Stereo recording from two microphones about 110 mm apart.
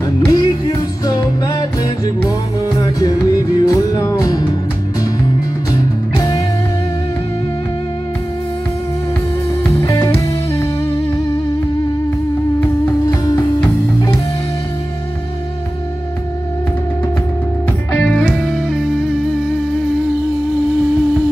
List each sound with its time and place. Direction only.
0.0 s music: 35° left (ahead or behind)
5.7 s music: 35° left (ahead or behind)
9.7 s music: 30° left (ahead or behind)
18.0 s music: 5° left (ahead or behind)